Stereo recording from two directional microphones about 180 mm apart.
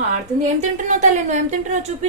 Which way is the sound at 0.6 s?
40° right (ahead or behind).